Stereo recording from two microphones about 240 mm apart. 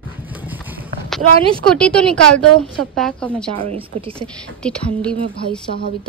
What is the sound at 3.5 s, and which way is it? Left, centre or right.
Speech, right.